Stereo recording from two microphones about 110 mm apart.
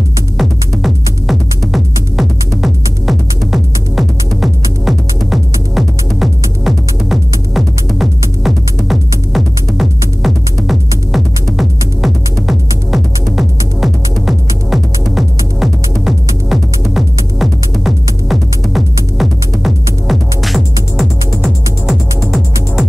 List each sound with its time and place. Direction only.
0.4 s music: centre (ahead or behind)